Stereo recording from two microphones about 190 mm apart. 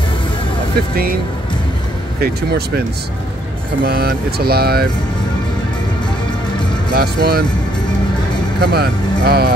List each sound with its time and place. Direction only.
2.1 s speech: 55° right (ahead or behind)
3.8 s speech: 55° right (ahead or behind)
6.9 s speech: 55° right (ahead or behind)
8.5 s speech: 55° right (ahead or behind)